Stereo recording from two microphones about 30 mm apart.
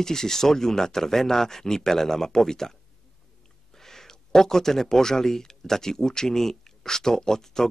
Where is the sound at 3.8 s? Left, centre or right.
Centre.